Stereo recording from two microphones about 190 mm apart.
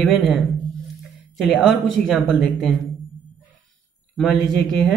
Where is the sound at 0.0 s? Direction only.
Centre (ahead or behind).